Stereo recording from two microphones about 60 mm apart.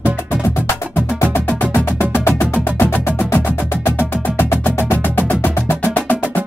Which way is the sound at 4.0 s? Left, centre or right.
Left.